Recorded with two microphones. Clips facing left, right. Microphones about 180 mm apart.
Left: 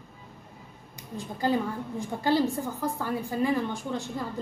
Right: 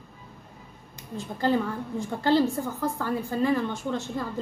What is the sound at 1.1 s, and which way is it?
A woman's voice, 15° left (ahead or behind).